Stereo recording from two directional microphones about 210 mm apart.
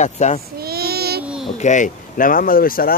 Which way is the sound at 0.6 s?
45° right (ahead or behind).